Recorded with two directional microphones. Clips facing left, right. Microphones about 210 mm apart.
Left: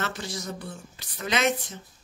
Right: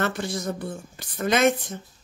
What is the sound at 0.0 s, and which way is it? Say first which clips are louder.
Speech: right 6 dB; 55° right (ahead or behind).